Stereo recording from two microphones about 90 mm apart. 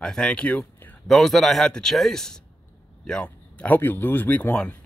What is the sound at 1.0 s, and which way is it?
Speech, centre (ahead or behind).